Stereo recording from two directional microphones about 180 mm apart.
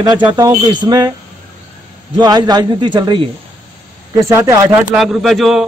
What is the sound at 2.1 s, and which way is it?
A man's voice, 20° right (ahead or behind).